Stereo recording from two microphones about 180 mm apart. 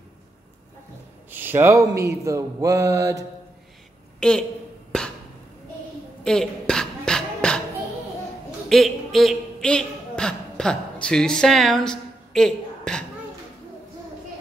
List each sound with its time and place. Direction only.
1.3 s speech: 10° right (ahead or behind)
4.2 s a woman's voice: 5° left (ahead or behind)
6.2 s beatboxing: 5° left (ahead or behind)
8.5 s a woman's voice: centre (ahead or behind)